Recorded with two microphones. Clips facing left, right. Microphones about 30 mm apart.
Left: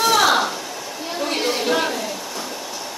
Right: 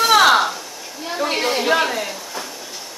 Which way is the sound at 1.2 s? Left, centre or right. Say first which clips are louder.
Right 2 dB; centre.